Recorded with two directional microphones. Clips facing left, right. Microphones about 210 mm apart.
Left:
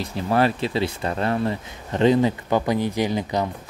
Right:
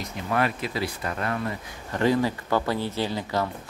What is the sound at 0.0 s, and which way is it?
Speech, 30° left (ahead or behind).